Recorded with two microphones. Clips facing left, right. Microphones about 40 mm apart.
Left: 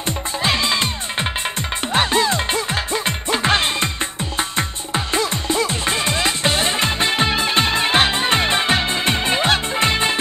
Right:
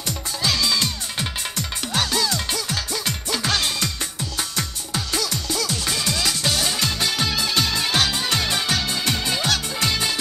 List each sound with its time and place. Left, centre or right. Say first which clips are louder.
0.0 s music: left 4 dB; left